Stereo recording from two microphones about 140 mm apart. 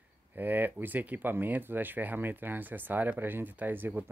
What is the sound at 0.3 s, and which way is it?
Speech, 15° right (ahead or behind).